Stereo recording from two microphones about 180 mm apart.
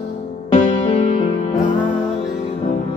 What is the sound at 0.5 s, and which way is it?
Music, 35° left (ahead or behind).